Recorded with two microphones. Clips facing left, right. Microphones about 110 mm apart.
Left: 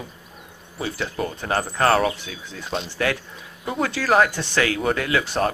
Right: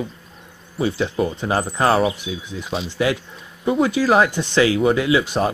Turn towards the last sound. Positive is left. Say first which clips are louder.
# right 4 dB
turn(degrees=-15)  # may be behind; listen again after turning